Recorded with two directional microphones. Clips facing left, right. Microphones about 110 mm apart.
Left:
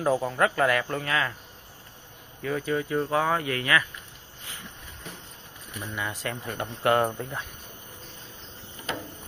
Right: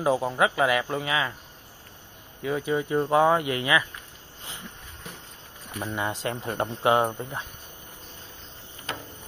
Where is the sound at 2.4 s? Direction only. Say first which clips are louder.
Right 1 dB; 15° right (ahead or behind).